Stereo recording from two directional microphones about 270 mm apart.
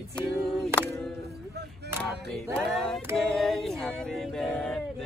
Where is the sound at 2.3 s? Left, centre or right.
Centre.